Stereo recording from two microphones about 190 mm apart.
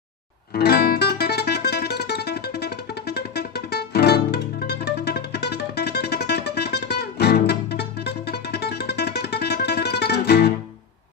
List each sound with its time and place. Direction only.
0.5 s music: 55° left (ahead or behind)